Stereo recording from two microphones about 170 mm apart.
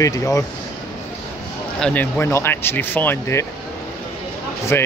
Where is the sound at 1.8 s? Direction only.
10° left (ahead or behind).